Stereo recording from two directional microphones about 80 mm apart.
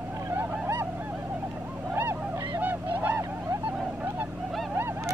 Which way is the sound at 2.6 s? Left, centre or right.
Right.